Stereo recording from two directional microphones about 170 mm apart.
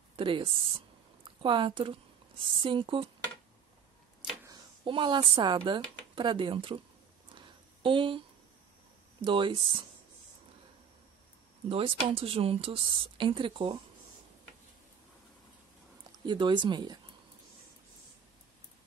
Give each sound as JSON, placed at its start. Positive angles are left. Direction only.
{"t": 0.1, "sound": "a woman's voice", "side_deg": -30}
{"t": 4.5, "sound": "speech", "side_deg": -30}
{"t": 7.3, "sound": "a sound", "side_deg": -30}
{"t": 9.2, "sound": "speech", "side_deg": -30}
{"t": 11.7, "sound": "a woman's voice", "side_deg": -35}
{"t": 16.3, "sound": "speech", "side_deg": -25}